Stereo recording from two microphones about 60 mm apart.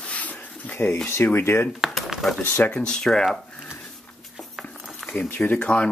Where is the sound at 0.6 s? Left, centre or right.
Left.